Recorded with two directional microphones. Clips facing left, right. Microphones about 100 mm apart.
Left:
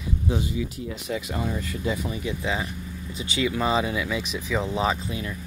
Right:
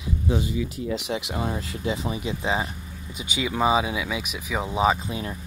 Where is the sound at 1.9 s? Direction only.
20° right (ahead or behind).